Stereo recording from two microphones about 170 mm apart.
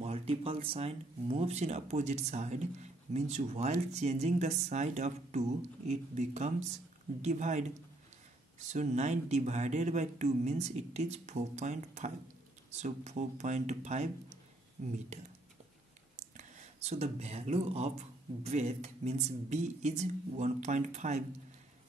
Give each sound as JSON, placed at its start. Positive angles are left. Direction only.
{"t": 0.0, "sound": "a sound", "side_deg": -35}
{"t": 0.7, "sound": "speech", "side_deg": -35}
{"t": 15.1, "sound": "speech", "side_deg": -40}
{"t": 16.3, "sound": "speech", "side_deg": -40}